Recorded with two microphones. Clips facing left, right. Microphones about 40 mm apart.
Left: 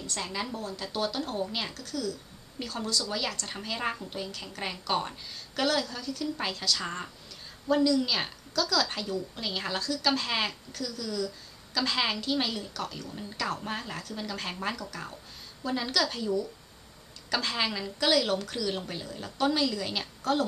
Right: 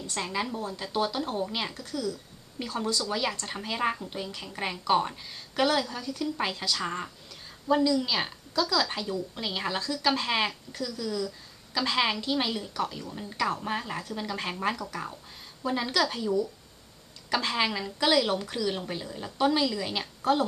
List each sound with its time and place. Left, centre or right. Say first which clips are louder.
0.2 s speech: right 4 dB; centre
0.6 s a woman's voice: right 3 dB; right
1.7 s a woman's voice: right 1 dB; right
4.3 s a woman's voice: right 1 dB; right
4.6 s a woman's voice: right 5 dB; centre
6.8 s speech: right 3 dB; centre
8.5 s a woman's voice: right 1 dB; centre
10.7 s a woman's voice: right 2 dB; right
14.8 s a woman's voice: right 3 dB; right
15.6 s speech: right 2 dB; centre
20.2 s a sound: right 3 dB; centre